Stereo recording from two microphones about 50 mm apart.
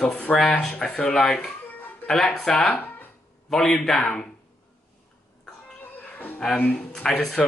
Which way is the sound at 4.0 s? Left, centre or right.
Centre.